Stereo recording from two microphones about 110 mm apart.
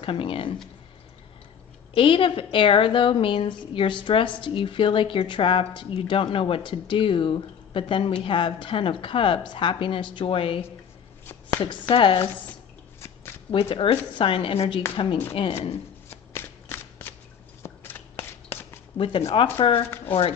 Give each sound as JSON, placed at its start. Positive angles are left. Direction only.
{"t": 0.0, "sound": "a woman's voice", "side_deg": 55}
{"t": 2.0, "sound": "a woman's voice", "side_deg": 50}
{"t": 11.9, "sound": "a woman's voice", "side_deg": 55}
{"t": 13.5, "sound": "a woman's voice", "side_deg": 55}
{"t": 16.1, "sound": "shuffling cards", "side_deg": 20}
{"t": 17.6, "sound": "a sound", "side_deg": 20}
{"t": 18.9, "sound": "a woman's voice", "side_deg": 55}